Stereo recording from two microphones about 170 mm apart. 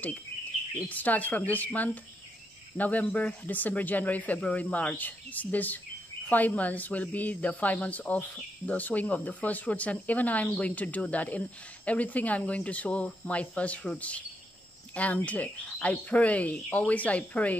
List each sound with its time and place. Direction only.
0.8 s speech: 10° left (ahead or behind)